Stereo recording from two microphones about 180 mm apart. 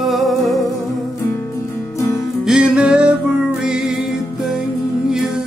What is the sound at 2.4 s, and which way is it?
Music, 5° right (ahead or behind).